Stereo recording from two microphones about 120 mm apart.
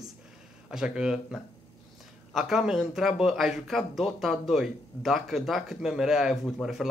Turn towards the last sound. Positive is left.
turn(degrees=0)  # may be behind; listen again after turning